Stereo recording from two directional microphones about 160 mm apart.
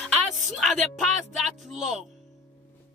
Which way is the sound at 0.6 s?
Centre (ahead or behind).